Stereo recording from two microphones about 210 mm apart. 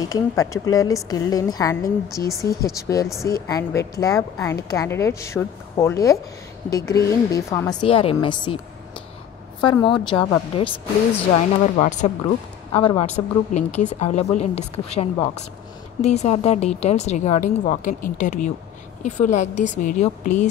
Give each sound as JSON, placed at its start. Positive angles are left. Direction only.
{"t": 0.1, "sound": "a woman's voice", "side_deg": 15}
{"t": 9.6, "sound": "a woman's voice", "side_deg": 20}
{"t": 11.6, "sound": "a woman's voice", "side_deg": 35}